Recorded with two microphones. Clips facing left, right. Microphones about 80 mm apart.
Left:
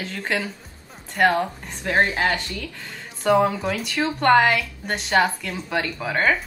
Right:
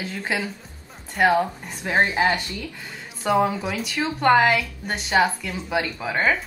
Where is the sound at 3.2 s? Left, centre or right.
Centre.